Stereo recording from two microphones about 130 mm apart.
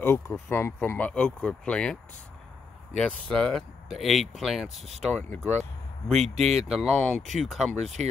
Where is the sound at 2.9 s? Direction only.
5° left (ahead or behind).